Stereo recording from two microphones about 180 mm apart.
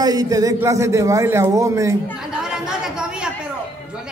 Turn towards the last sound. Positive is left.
turn(degrees=-5)  # may be behind; listen again after turning